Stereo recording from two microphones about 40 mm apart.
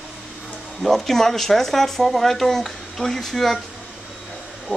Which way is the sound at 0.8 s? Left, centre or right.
Centre.